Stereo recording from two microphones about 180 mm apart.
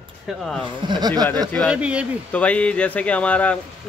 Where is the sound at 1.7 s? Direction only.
5° right (ahead or behind).